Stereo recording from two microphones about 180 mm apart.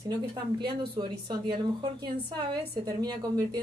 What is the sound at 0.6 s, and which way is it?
Speech, 65° right (ahead or behind).